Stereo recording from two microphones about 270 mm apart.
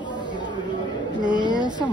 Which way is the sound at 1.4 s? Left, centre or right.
Centre.